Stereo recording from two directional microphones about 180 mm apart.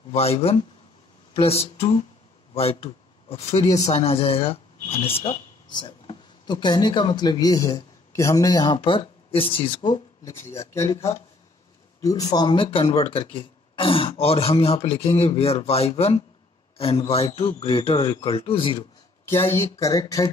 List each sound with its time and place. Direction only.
0.1 s speech: 35° left (ahead or behind)
10.4 s speech: 15° left (ahead or behind)
12.0 s a man's voice: 20° left (ahead or behind)
19.2 s a man's voice: 15° left (ahead or behind)